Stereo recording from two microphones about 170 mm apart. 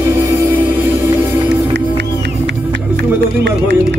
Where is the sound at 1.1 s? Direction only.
25° right (ahead or behind).